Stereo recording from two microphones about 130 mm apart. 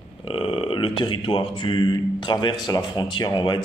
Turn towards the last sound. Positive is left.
turn(degrees=35)  # may be behind; listen again after turning